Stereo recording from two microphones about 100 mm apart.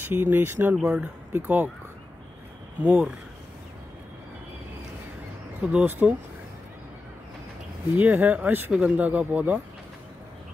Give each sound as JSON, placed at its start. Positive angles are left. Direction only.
{"t": 0.1, "sound": "speech", "side_deg": -25}
{"t": 0.8, "sound": "speech", "side_deg": -10}
{"t": 2.8, "sound": "speech", "side_deg": -10}
{"t": 5.6, "sound": "speech", "side_deg": -10}
{"t": 7.9, "sound": "speech", "side_deg": -15}